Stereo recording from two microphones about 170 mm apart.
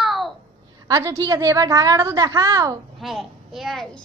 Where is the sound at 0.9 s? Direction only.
20° right (ahead or behind).